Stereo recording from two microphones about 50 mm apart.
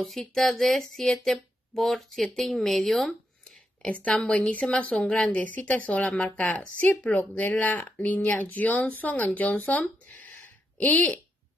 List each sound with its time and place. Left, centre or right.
0.4 s speech: centre
3.4 s a sound: left
4.5 s a woman's voice: left